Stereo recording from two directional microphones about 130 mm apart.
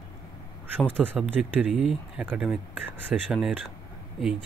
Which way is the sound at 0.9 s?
15° right (ahead or behind).